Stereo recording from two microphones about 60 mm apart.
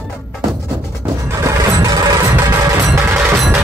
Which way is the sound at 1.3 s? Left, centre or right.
Right.